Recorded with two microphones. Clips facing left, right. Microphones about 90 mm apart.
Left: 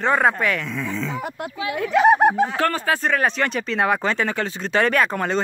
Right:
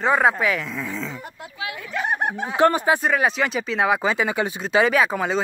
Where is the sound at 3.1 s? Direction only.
5° right (ahead or behind).